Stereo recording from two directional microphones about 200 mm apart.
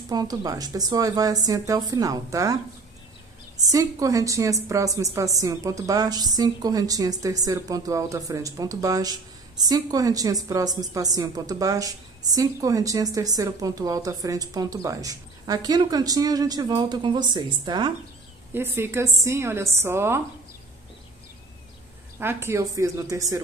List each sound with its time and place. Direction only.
0.1 s a woman's voice: 20° right (ahead or behind)
3.6 s a woman's voice: 15° right (ahead or behind)
18.5 s a woman's voice: 10° right (ahead or behind)
22.2 s a woman's voice: 10° right (ahead or behind)